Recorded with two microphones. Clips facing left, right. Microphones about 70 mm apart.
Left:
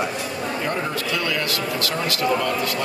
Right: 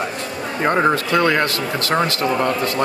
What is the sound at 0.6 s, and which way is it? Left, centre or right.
Speech, right.